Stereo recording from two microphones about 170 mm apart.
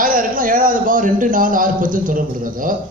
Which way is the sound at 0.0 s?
55° right (ahead or behind).